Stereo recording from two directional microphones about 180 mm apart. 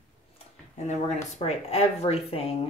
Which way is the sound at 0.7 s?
40° left (ahead or behind).